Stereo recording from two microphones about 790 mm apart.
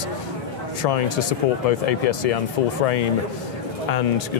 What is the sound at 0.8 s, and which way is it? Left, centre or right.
Speech, left.